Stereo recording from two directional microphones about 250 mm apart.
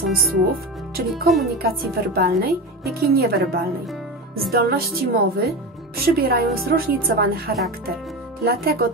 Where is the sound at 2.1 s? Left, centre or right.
Right.